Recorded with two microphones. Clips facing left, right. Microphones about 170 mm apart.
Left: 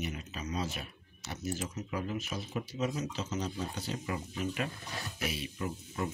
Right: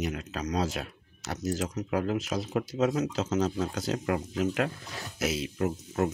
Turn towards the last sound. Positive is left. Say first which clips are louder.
# right 8 dB
turn(degrees=-80)